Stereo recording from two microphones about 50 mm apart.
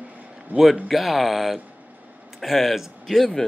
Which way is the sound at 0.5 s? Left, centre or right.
Right.